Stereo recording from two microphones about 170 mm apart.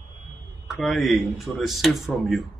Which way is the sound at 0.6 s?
Centre (ahead or behind).